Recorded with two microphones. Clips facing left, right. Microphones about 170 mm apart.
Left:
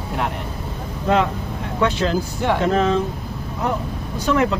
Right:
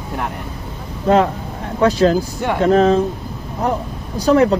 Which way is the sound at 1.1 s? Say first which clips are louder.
Right 5 dB; 35° right (ahead or behind).